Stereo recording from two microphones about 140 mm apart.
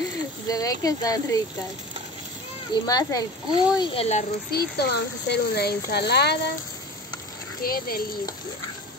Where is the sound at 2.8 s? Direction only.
25° left (ahead or behind).